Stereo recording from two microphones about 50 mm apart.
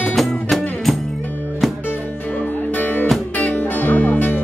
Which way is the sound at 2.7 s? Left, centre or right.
Left.